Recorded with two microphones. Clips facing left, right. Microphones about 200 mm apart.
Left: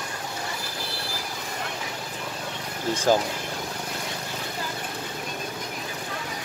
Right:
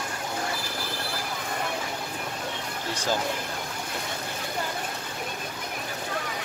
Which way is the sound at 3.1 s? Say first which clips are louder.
Left 7 dB; 50° left (ahead or behind).